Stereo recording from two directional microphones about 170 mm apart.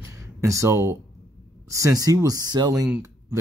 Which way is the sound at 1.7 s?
20° right (ahead or behind).